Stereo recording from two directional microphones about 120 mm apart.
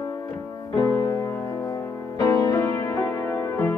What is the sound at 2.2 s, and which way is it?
Piano, 25° left (ahead or behind).